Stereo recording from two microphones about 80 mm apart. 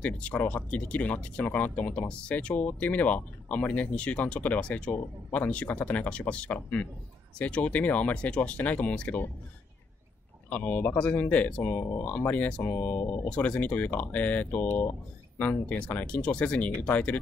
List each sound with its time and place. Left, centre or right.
0.0 s speech: centre
10.5 s speech: centre